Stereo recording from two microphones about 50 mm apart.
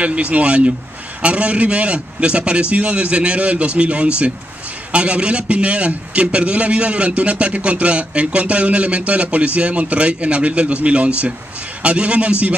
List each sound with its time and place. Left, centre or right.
0.0 s a man's voice: right